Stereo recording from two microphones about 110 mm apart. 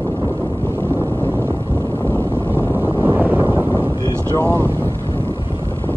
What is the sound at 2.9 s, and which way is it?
Wind noise, 20° right (ahead or behind).